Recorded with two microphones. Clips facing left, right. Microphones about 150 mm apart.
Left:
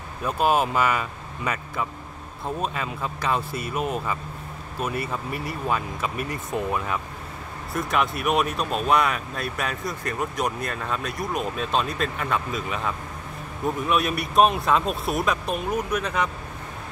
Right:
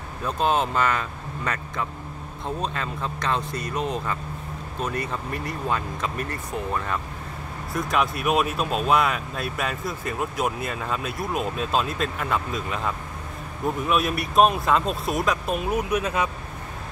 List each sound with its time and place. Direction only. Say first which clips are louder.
0.2 s speech: left 1 dB; 10° left (ahead or behind); by 16.3 s 5° right (ahead or behind)